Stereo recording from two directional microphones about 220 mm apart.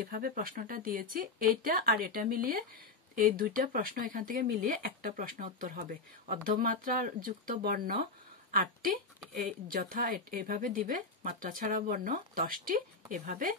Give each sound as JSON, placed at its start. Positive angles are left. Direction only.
{"t": 0.0, "sound": "speech", "side_deg": -40}